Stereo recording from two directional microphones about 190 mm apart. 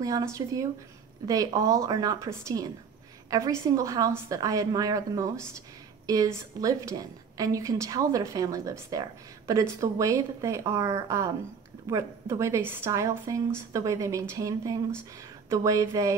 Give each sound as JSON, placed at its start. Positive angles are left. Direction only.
{"t": 0.0, "sound": "a woman's voice", "side_deg": -20}